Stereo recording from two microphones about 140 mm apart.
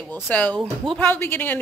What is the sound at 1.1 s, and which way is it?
Speech, 15° left (ahead or behind).